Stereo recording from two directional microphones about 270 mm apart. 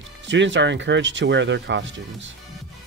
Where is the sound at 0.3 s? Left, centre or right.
Right.